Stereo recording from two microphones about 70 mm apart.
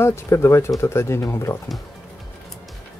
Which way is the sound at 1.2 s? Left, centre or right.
Left.